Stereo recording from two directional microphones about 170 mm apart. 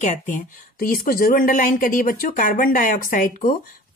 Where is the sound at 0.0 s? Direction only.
45° left (ahead or behind).